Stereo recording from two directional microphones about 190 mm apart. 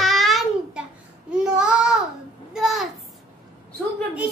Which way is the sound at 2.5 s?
Centre (ahead or behind).